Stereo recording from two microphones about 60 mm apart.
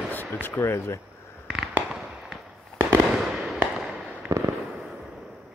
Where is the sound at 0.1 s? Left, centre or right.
Left.